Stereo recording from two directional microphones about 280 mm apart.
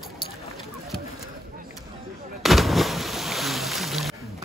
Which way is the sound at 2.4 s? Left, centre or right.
Centre.